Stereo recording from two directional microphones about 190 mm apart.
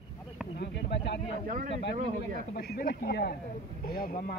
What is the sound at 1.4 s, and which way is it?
Speech, 45° right (ahead or behind).